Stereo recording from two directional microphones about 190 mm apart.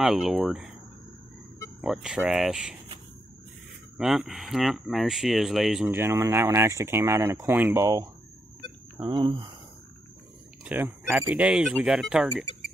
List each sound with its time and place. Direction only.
0.0 s speech: centre (ahead or behind)
1.8 s speech: centre (ahead or behind)
4.0 s speech: 5° right (ahead or behind); by 9.5 s 25° right (ahead or behind)
10.6 s speech: 10° right (ahead or behind)